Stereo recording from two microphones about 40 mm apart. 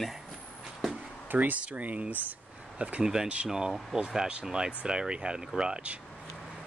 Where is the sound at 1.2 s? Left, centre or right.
Right.